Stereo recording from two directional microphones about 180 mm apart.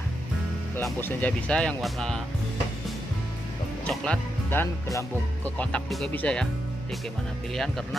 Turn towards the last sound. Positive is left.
turn(degrees=0)  # may be behind; listen again after turning